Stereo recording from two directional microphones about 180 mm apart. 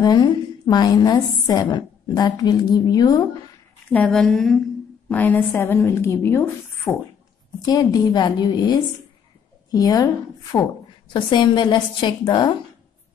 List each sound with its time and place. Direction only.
0.0 s a woman's voice: 20° left (ahead or behind)
3.9 s a woman's voice: 5° left (ahead or behind)
7.6 s a woman's voice: 20° left (ahead or behind)
11.1 s a woman's voice: 25° left (ahead or behind)